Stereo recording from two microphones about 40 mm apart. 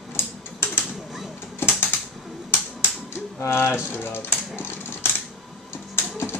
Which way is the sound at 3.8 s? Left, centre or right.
Left.